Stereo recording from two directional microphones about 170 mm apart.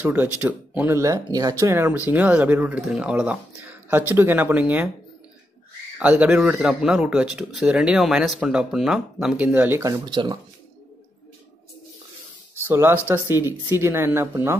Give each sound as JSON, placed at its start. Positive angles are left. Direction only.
{"t": 0.0, "sound": "speech", "side_deg": -10}
{"t": 5.9, "sound": "speech", "side_deg": -5}
{"t": 12.5, "sound": "speech", "side_deg": -15}